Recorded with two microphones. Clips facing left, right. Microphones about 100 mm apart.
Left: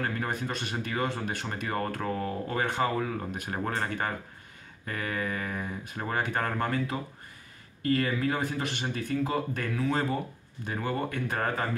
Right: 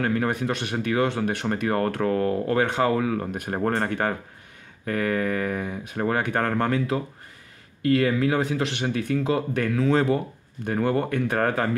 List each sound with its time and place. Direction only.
0.0 s speech: 65° right (ahead or behind); by 10.1 s 90° right
10.6 s speech: 60° right (ahead or behind)